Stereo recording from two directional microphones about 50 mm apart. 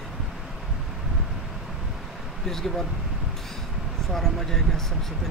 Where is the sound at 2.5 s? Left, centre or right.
Centre.